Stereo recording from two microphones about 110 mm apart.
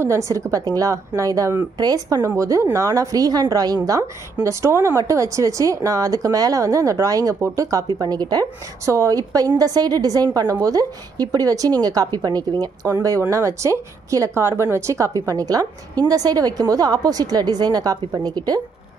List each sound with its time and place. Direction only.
0.0 s a woman's voice: 25° right (ahead or behind)